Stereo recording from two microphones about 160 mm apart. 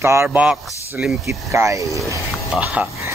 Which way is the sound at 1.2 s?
20° right (ahead or behind).